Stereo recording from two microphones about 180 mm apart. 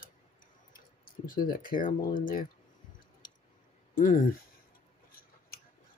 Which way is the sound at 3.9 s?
45° left (ahead or behind).